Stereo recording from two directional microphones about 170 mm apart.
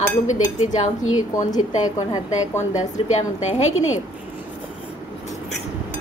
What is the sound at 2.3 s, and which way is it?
A woman's voice, 45° left (ahead or behind).